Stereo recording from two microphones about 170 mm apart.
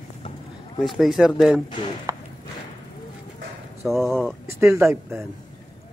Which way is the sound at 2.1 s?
20° right (ahead or behind).